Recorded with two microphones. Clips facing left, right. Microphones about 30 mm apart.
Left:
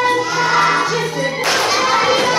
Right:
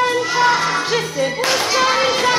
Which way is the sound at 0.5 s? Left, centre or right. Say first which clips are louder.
Left 4 dB; left.